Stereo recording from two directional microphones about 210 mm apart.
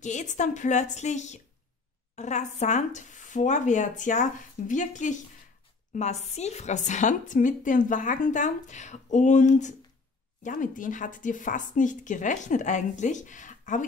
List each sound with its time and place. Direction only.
0.0 s a woman's voice: 35° left (ahead or behind)